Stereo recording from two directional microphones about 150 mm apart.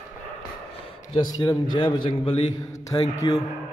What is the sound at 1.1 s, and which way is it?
A man's voice, 25° left (ahead or behind).